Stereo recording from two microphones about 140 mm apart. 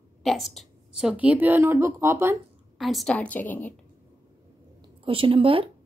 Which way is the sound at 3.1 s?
10° left (ahead or behind).